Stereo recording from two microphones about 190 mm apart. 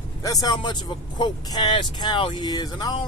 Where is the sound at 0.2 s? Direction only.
20° left (ahead or behind).